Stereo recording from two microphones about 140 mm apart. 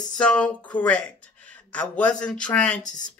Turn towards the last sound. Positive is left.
turn(degrees=5)  # may be behind; listen again after turning